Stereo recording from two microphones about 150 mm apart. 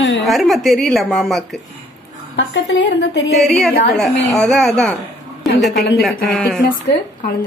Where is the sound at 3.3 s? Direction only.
Centre (ahead or behind).